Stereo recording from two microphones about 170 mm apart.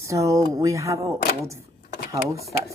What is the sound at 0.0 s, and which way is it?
Speech, 20° right (ahead or behind).